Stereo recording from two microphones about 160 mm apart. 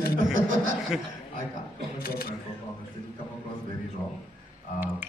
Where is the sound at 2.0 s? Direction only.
70° left (ahead or behind).